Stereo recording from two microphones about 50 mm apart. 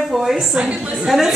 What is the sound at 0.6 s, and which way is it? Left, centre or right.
Speech, right.